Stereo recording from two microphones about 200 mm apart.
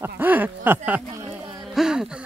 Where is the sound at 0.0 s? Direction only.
10° right (ahead or behind).